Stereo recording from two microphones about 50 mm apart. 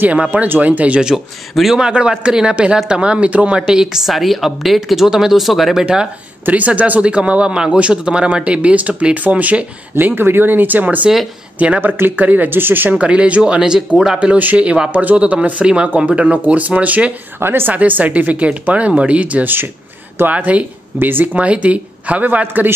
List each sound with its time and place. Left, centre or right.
0.3 s speech: right
1.5 s speech: centre
1.8 s a man's voice: centre
6.4 s a man's voice: right
9.9 s speech: right
12.9 s a man's voice: right
14.2 s a man's voice: right
15.6 s a man's voice: centre
17.4 s a woman's voice: right
17.7 s a man's voice: right